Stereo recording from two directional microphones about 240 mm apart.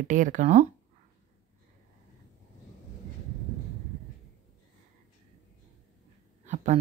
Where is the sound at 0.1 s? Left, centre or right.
Right.